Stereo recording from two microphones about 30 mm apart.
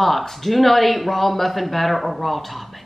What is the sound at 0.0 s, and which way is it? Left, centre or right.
A woman's voice, centre.